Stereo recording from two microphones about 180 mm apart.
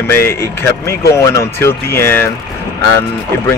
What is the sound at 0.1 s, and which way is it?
Speech, 15° left (ahead or behind).